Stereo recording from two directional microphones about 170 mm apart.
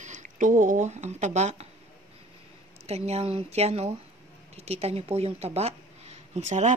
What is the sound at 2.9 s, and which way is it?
A woman's voice, 40° right (ahead or behind).